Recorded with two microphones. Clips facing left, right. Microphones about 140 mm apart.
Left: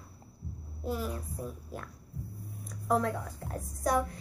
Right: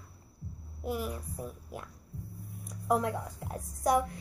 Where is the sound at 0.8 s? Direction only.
15° right (ahead or behind).